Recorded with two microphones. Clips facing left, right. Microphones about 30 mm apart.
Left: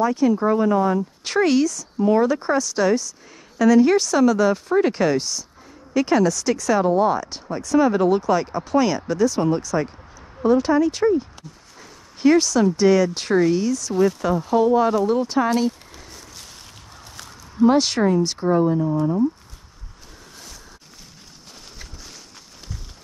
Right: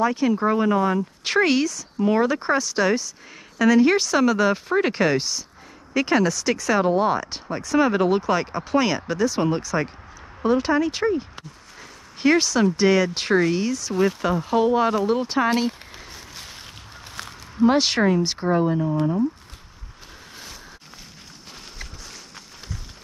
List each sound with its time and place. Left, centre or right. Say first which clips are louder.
0.0 s speech: left 2 dB; centre
17.2 s a sound: right 5 dB; right
17.6 s speech: left 1 dB; centre